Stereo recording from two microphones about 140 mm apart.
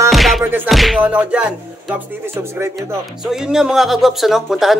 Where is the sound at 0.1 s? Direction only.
Centre (ahead or behind).